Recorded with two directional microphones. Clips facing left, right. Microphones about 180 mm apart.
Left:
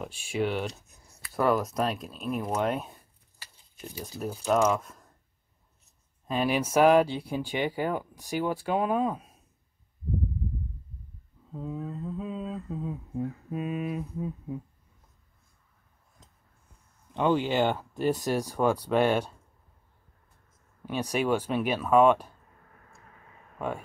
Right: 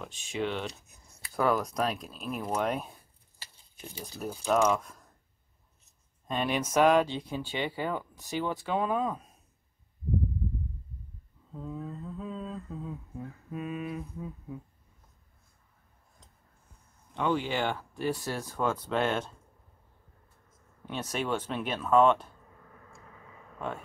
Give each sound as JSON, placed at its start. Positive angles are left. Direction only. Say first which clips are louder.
{"t": 0.0, "sound": "speech", "louder": "left 4 dB", "side_deg": 10}
{"t": 4.0, "sound": "speech", "louder": "left 2 dB", "side_deg": 0}
{"t": 6.2, "sound": "speech", "louder": "left 3 dB", "side_deg": 5}
{"t": 11.5, "sound": "speech", "louder": "left 3 dB", "side_deg": 15}
{"t": 17.1, "sound": "speech", "louder": "left 4 dB", "side_deg": 25}
{"t": 20.8, "sound": "speech", "louder": "left 5 dB", "side_deg": 10}